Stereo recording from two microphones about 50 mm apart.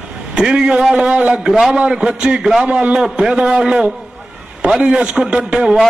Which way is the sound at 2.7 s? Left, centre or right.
Right.